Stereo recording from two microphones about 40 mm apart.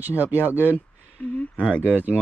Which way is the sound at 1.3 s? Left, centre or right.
Left.